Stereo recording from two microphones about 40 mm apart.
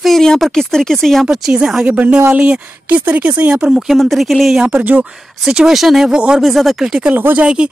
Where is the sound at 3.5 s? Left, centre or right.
Right.